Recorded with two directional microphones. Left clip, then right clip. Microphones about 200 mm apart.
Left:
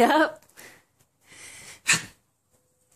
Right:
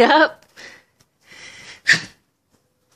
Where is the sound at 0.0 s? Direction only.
Centre (ahead or behind).